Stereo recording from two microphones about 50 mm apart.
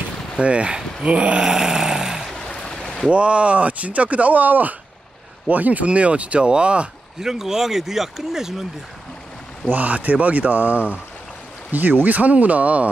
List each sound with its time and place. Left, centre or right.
0.4 s speech: right
1.4 s dog: centre
2.3 s a sound: centre
3.1 s speech: right
7.2 s speech: centre
9.7 s speech: right